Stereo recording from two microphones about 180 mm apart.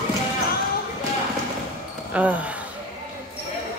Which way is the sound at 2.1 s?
10° right (ahead or behind).